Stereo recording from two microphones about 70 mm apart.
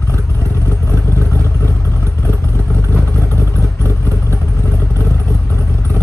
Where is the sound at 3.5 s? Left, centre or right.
Right.